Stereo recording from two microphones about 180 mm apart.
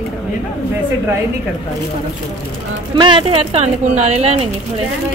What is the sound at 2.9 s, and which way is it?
Speech, 25° right (ahead or behind).